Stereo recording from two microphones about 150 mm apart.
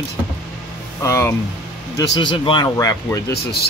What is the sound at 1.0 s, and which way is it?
Speech, 20° left (ahead or behind).